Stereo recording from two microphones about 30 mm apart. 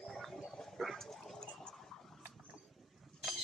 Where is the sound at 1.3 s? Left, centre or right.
Left.